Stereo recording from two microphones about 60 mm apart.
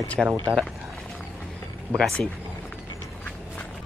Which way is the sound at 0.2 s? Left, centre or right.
Centre.